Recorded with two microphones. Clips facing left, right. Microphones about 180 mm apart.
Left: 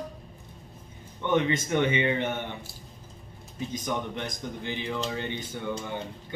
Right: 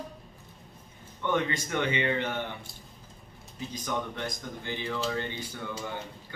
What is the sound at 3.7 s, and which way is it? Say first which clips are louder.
Speech: left 2 dB; 20° left (ahead or behind).